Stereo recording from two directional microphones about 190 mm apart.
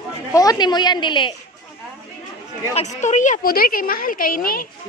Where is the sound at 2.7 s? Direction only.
40° left (ahead or behind).